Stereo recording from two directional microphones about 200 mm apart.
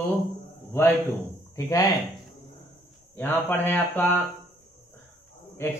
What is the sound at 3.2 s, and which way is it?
Speech, 10° left (ahead or behind).